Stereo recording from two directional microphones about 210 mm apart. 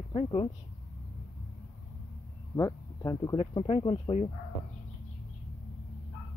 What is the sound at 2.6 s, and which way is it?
Speech, 15° left (ahead or behind).